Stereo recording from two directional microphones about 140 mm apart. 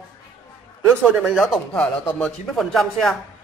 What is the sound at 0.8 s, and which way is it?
Speech, 10° right (ahead or behind).